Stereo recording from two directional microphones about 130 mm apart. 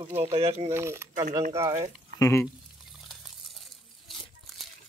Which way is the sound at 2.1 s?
25° left (ahead or behind).